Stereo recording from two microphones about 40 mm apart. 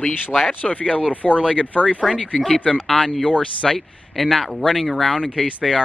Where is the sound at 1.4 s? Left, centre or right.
Right.